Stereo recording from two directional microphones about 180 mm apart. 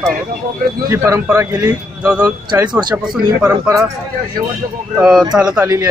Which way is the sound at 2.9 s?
10° right (ahead or behind).